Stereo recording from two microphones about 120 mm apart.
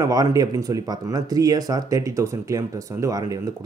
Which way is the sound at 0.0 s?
30° right (ahead or behind).